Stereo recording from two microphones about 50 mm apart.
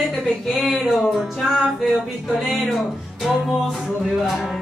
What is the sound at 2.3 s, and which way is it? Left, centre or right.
Music, centre.